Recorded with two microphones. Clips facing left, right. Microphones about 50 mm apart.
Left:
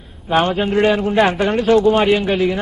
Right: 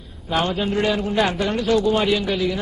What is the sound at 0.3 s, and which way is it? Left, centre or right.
A man's voice, left.